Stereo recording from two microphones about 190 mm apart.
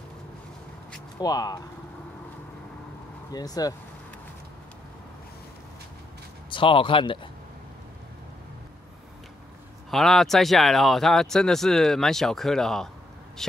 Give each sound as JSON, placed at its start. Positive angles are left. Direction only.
{"t": 1.2, "sound": "speech", "side_deg": 20}
{"t": 3.3, "sound": "speech", "side_deg": 20}
{"t": 6.5, "sound": "speech", "side_deg": 25}
{"t": 9.8, "sound": "a man's voice", "side_deg": 0}